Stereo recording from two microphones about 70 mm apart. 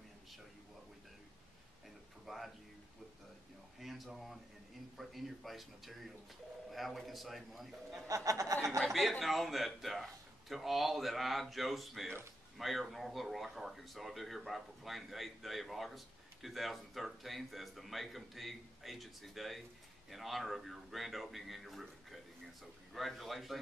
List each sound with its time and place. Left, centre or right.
2.2 s music: centre
3.8 s speech: centre
8.1 s speech: right
8.8 s speech: centre